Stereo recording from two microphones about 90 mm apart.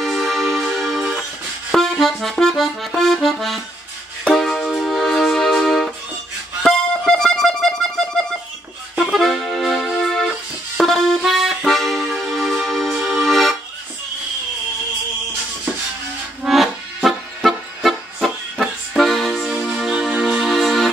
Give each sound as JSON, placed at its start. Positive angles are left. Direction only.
{"t": 0.0, "sound": "music", "side_deg": 0}
{"t": 1.7, "sound": "accordion", "side_deg": 0}
{"t": 4.3, "sound": "music", "side_deg": 5}
{"t": 10.8, "sound": "accordion", "side_deg": 5}
{"t": 12.9, "sound": "music", "side_deg": 0}
{"t": 16.4, "sound": "music", "side_deg": 0}